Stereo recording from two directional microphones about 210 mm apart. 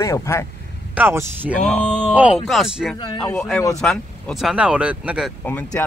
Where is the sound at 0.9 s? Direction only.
10° right (ahead or behind).